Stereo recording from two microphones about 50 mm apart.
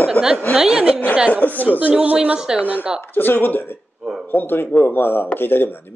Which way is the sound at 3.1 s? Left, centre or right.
Left.